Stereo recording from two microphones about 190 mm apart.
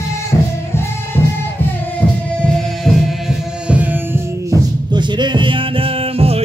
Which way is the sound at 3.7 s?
10° right (ahead or behind).